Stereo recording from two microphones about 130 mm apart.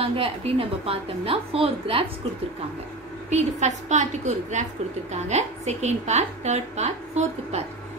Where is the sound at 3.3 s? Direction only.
60° right (ahead or behind).